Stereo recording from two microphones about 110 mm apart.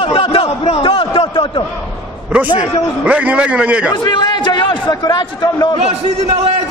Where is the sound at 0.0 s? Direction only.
55° left (ahead or behind).